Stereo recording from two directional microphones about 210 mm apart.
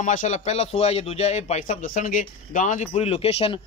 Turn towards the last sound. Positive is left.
turn(degrees=30)  # may be behind; listen again after turning